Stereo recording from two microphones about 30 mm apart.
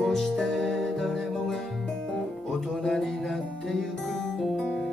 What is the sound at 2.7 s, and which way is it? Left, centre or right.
Music, centre.